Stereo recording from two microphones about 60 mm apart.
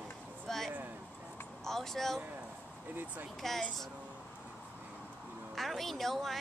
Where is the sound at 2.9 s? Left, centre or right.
Right.